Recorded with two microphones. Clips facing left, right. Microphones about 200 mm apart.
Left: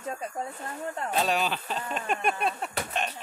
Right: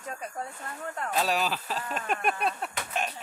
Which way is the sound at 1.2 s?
Centre (ahead or behind).